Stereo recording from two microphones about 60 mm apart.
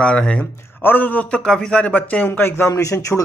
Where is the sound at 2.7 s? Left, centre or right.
Left.